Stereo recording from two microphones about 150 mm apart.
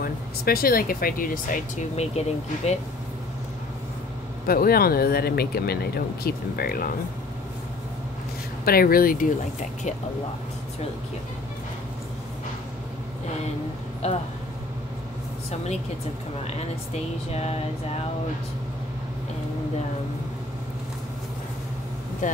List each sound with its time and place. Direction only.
0.0 s speech: 80° left
2.0 s speech: 45° left (ahead or behind)
4.5 s speech: 85° left
8.6 s speech: 80° left; by 9.9 s 60° left (ahead or behind)
14.0 s speech: 45° left (ahead or behind)
17.3 s speech: 45° left (ahead or behind)
22.2 s speech: 60° left (ahead or behind)